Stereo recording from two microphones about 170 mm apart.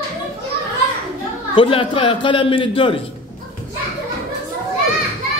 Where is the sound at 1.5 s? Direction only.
30° left (ahead or behind).